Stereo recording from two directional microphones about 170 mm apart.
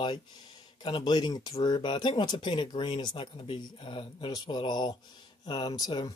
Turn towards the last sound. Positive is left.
turn(degrees=25)  # may be behind; listen again after turning